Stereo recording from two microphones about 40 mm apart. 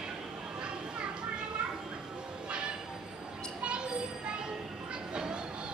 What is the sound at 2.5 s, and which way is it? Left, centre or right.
Train, right.